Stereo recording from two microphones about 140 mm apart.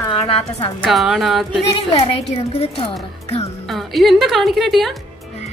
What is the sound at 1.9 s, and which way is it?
Speech, 45° left (ahead or behind).